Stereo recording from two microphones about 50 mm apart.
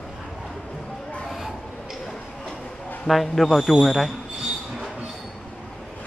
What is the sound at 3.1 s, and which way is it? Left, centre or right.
Speech, centre.